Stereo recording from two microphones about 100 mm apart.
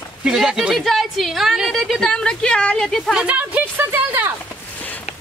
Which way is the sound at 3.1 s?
15° right (ahead or behind).